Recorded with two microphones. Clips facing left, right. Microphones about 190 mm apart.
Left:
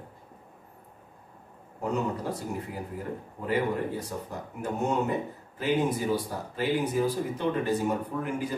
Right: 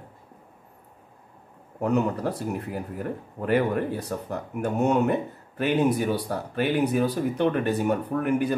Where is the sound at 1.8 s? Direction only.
65° right (ahead or behind).